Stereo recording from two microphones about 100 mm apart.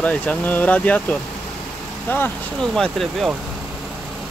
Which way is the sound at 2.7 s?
Centre (ahead or behind).